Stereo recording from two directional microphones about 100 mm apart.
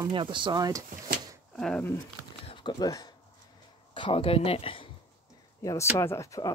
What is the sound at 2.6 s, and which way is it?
Speech, 40° left (ahead or behind).